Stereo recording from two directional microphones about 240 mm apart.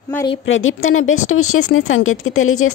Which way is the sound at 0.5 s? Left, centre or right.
Left.